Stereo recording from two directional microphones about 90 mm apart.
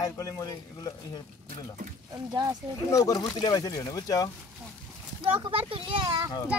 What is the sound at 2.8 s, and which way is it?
Speech, 40° left (ahead or behind).